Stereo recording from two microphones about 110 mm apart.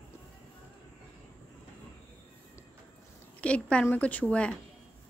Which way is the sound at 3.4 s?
10° left (ahead or behind).